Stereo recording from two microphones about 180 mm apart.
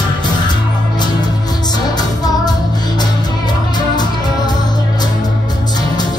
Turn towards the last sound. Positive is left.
turn(degrees=25)  # may be behind; listen again after turning